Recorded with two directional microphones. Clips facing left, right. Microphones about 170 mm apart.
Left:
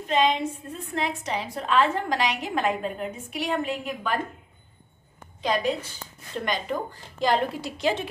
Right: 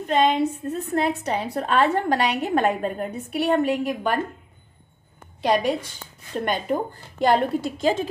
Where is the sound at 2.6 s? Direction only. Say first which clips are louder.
Right 4 dB; 45° right (ahead or behind).